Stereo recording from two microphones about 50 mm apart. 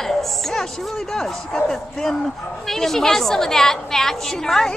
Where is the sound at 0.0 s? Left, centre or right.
Centre.